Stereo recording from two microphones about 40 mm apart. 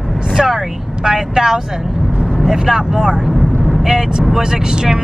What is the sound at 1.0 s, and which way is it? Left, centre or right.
Speech, centre.